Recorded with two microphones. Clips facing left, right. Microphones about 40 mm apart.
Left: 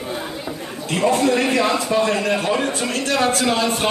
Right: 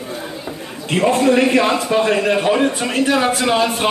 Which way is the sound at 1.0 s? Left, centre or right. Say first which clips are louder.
Right 3 dB; right.